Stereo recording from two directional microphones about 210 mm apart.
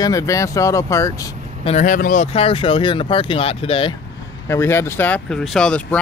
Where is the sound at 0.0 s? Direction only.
15° left (ahead or behind).